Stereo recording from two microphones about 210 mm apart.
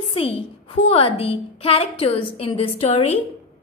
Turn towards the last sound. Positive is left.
turn(degrees=30)  # may be behind; listen again after turning